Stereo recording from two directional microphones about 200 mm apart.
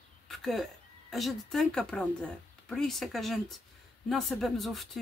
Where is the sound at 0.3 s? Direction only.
Centre (ahead or behind).